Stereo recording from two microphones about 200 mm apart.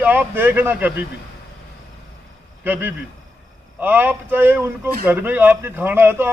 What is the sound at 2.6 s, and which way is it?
A man's voice, 10° right (ahead or behind).